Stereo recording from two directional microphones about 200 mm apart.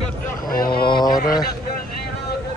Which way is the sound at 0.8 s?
25° left (ahead or behind).